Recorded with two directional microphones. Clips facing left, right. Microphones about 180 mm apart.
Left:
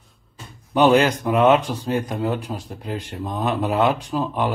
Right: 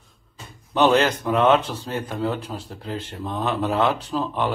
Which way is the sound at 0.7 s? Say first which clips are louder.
Left 2 dB; 10° left (ahead or behind).